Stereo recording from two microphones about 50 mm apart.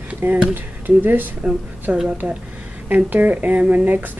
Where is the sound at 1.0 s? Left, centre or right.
Right.